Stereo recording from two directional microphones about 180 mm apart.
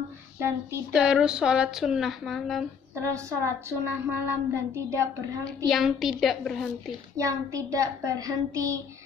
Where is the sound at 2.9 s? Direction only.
15° right (ahead or behind).